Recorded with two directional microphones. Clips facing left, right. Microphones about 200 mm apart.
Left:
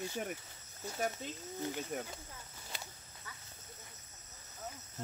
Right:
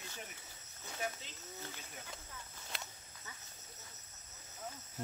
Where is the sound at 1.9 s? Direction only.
50° left (ahead or behind).